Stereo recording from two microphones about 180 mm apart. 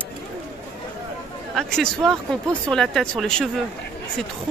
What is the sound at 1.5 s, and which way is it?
Speech, centre (ahead or behind).